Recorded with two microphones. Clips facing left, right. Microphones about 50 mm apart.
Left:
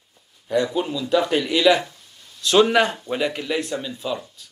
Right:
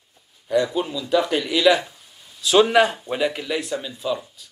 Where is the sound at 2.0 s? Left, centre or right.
Centre.